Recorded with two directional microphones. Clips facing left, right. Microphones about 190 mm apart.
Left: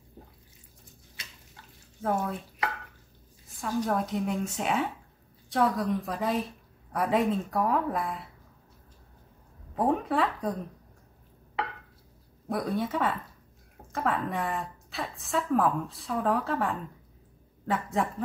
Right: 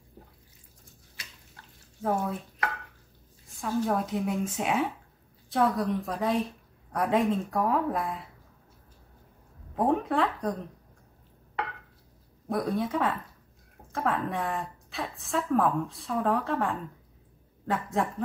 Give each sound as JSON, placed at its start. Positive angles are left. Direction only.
{"t": 2.0, "sound": "speech", "side_deg": -5}
{"t": 3.5, "sound": "a woman's voice", "side_deg": 0}
{"t": 9.8, "sound": "speech", "side_deg": 0}
{"t": 12.4, "sound": "a woman's voice", "side_deg": 0}